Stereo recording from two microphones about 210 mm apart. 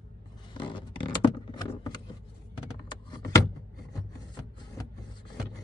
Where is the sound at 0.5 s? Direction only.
20° left (ahead or behind).